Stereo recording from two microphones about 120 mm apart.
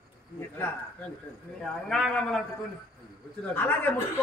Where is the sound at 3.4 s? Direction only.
15° left (ahead or behind).